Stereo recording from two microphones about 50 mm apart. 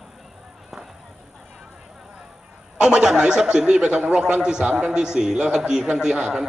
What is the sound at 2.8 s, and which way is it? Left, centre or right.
A man's voice, centre.